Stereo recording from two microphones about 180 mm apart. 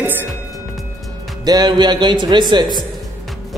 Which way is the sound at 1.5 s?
20° right (ahead or behind).